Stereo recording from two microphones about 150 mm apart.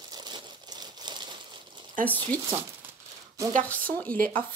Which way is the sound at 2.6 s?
15° right (ahead or behind).